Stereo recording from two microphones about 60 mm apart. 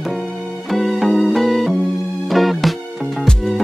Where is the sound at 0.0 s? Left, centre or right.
Centre.